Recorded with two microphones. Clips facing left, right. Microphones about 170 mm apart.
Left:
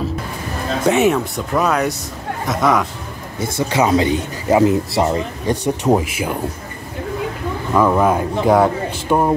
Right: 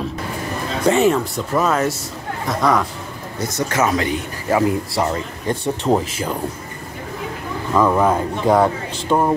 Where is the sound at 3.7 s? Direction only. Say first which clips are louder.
Left 4 dB; 20° left (ahead or behind).